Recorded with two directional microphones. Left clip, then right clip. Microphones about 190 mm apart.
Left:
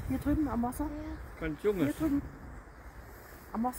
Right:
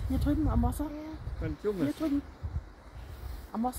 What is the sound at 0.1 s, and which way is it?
Speech, 55° right (ahead or behind).